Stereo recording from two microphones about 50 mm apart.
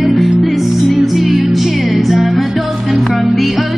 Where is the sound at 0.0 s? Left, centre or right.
Centre.